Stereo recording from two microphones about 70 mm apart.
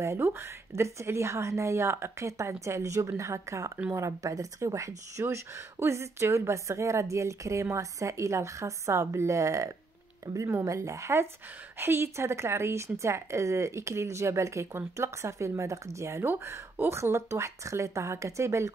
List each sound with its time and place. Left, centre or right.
0.0 s a woman's voice: right
5.2 s a woman's voice: right